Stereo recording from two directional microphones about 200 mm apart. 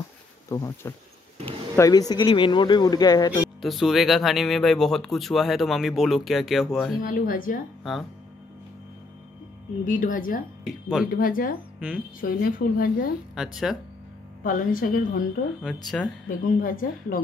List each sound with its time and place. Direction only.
0.5 s speech: 15° left (ahead or behind)
3.6 s speech: centre (ahead or behind)
7.0 s a woman's voice: 45° left (ahead or behind)
9.8 s speech: 40° left (ahead or behind)
10.6 s speech: centre (ahead or behind)
11.1 s a woman's voice: 45° left (ahead or behind)
13.3 s speech: 5° right (ahead or behind)
14.4 s a woman's voice: 45° left (ahead or behind)
15.6 s speech: centre (ahead or behind)
16.3 s a woman's voice: 45° left (ahead or behind)